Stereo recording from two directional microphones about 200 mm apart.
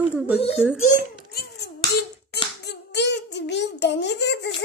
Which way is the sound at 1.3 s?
55° left (ahead or behind).